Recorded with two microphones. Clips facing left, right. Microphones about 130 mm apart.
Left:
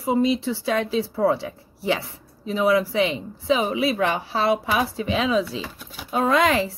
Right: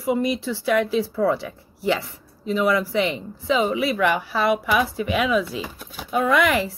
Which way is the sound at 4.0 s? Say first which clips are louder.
Right 1 dB; 30° left (ahead or behind).